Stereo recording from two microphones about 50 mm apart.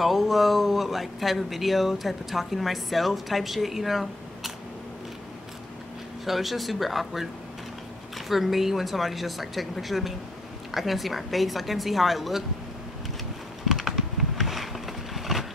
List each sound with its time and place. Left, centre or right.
0.0 s speech: centre
6.2 s speech: centre
8.3 s speech: centre
13.7 s a sound: centre